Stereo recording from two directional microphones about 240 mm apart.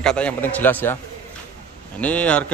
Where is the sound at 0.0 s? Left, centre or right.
Centre.